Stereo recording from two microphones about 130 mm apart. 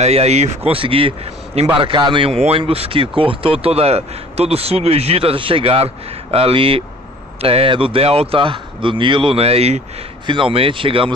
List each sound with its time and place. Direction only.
0.0 s speech: 55° right (ahead or behind)
10.2 s speech: 40° right (ahead or behind)